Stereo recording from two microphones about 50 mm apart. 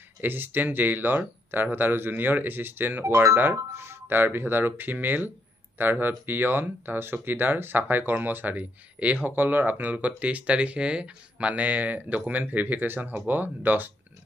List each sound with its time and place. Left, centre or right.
0.2 s speech: right
3.0 s speech: right
3.7 s speech: right